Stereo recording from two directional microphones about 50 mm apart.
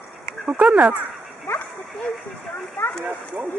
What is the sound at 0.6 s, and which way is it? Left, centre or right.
Speech, right.